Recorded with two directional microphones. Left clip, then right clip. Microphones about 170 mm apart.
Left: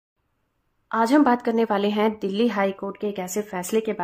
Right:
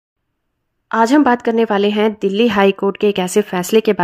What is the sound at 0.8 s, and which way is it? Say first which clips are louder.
A woman's voice: right 6 dB; 30° right (ahead or behind).